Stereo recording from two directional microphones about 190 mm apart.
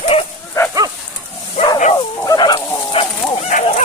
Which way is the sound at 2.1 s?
20° left (ahead or behind).